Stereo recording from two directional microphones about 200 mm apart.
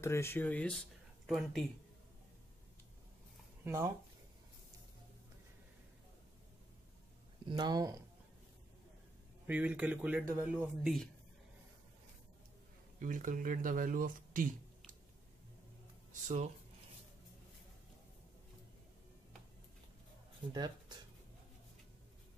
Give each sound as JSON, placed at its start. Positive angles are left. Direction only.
{"t": 0.0, "sound": "speech", "side_deg": 15}
{"t": 3.6, "sound": "a man's voice", "side_deg": -15}
{"t": 7.4, "sound": "speech", "side_deg": -20}
{"t": 9.5, "sound": "a man's voice", "side_deg": -5}
{"t": 13.0, "sound": "speech", "side_deg": -40}
{"t": 16.1, "sound": "speech", "side_deg": -35}